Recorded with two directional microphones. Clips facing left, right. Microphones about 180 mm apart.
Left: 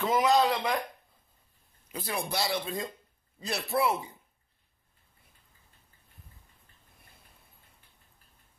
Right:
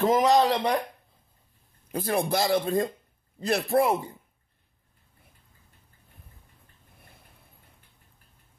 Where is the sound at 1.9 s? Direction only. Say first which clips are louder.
Right 8 dB; 50° right (ahead or behind).